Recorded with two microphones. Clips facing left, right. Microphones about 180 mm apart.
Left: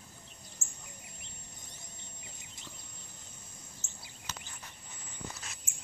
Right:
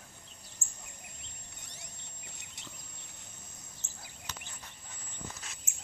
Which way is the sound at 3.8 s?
45° left (ahead or behind).